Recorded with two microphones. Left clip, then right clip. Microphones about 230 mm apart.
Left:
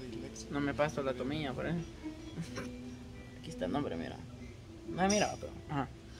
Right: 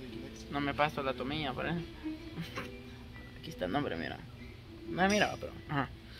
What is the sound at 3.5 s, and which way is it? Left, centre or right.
Speech, centre.